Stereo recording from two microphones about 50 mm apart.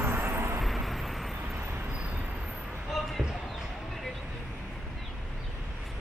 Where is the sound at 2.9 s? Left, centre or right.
Centre.